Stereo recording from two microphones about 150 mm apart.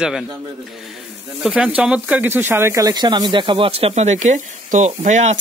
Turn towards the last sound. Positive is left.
turn(degrees=-50)  # may be behind; listen again after turning